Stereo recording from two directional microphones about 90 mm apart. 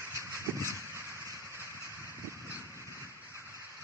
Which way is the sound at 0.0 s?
30° right (ahead or behind).